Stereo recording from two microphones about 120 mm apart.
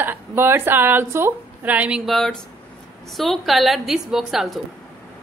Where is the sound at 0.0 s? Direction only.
15° right (ahead or behind); by 4.6 s centre (ahead or behind).